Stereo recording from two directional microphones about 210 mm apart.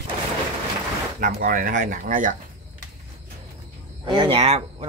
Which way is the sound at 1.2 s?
40° right (ahead or behind).